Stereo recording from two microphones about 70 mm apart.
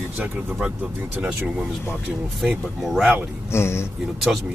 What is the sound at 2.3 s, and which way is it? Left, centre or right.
Speech, centre.